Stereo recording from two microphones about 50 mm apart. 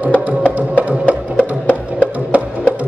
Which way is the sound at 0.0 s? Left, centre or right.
Right.